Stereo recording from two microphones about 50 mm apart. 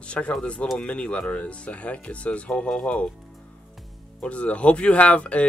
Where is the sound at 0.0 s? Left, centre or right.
Left.